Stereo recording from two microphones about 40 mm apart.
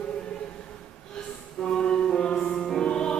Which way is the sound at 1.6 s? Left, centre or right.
Centre.